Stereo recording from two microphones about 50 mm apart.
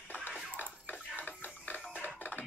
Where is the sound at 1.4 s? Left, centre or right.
Left.